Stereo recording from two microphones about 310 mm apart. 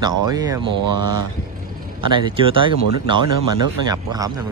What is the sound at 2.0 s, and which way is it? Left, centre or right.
Speech, centre.